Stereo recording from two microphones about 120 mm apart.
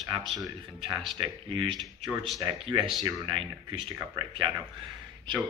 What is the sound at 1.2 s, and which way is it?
A man's voice, 45° right (ahead or behind).